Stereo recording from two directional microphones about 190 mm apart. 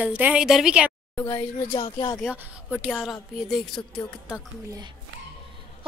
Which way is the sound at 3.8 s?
20° left (ahead or behind).